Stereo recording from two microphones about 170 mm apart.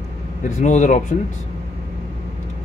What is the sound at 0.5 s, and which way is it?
Speech, 45° left (ahead or behind).